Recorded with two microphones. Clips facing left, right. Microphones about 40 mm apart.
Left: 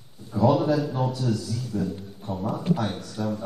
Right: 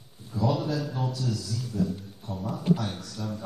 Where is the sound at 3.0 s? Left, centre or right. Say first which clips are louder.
Left 6 dB; left.